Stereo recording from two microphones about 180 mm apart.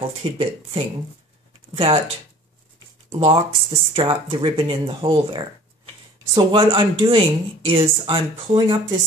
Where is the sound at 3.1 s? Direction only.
30° right (ahead or behind).